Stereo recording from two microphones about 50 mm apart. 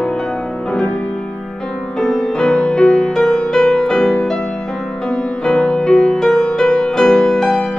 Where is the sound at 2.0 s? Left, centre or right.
Centre.